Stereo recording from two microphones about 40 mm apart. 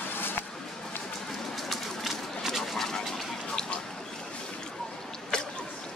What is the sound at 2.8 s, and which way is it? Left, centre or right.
Bird, centre.